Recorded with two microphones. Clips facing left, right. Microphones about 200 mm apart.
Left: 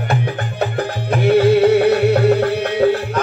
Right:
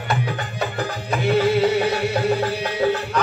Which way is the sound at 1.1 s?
55° left (ahead or behind).